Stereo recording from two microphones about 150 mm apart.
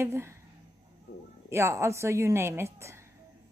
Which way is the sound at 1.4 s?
20° right (ahead or behind).